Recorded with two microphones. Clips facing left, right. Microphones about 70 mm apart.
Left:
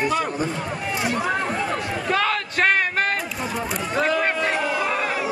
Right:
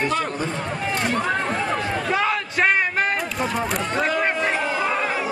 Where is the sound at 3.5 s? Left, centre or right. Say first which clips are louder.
Left 1 dB; centre.